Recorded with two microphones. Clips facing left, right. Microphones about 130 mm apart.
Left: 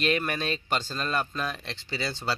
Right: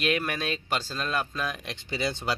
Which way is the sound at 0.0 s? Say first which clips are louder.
Left 1 dB; 5° right (ahead or behind).